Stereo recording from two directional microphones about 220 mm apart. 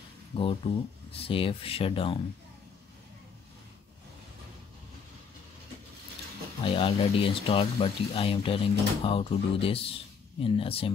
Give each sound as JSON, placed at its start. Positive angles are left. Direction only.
{"t": 0.3, "sound": "speech", "side_deg": 25}
{"t": 6.6, "sound": "speech", "side_deg": 25}